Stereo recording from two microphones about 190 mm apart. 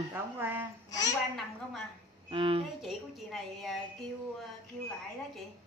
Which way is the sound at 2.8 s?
Centre (ahead or behind).